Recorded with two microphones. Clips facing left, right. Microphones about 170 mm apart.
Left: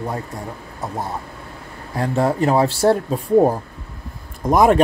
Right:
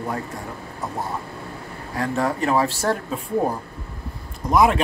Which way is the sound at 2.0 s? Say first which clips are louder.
Left 4 dB; 25° left (ahead or behind).